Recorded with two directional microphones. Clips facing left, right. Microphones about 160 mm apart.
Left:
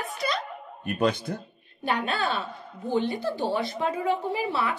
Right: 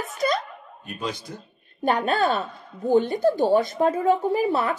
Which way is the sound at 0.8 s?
60° left (ahead or behind).